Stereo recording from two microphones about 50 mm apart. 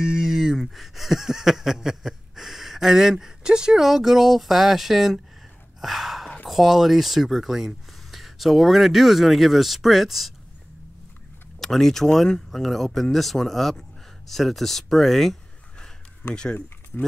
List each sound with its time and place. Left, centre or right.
0.2 s a sound: centre
5.8 s gasp: centre
6.4 s speech: centre
11.6 s speech: centre
16.2 s speech: left